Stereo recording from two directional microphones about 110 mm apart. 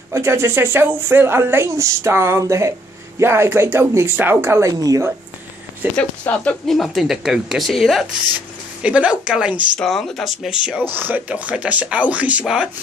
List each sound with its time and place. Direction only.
0.1 s speech: 25° right (ahead or behind)
5.9 s speech: 10° left (ahead or behind)
6.7 s speech: centre (ahead or behind)
8.8 s speech: 10° right (ahead or behind)
9.8 s speech: 5° left (ahead or behind)
10.8 s speech: 20° right (ahead or behind)